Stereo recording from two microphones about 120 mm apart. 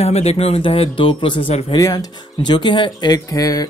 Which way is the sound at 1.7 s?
30° left (ahead or behind).